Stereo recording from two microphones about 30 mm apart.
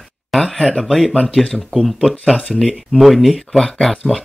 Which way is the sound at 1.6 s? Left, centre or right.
Centre.